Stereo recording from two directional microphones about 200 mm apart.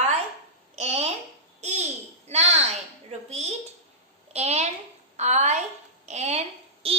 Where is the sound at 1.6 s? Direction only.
35° right (ahead or behind).